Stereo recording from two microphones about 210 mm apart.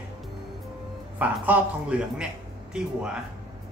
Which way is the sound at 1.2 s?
5° right (ahead or behind).